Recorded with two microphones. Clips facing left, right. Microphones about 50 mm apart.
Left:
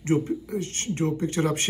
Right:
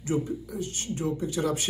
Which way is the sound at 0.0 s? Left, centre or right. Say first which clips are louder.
Left 4 dB; left.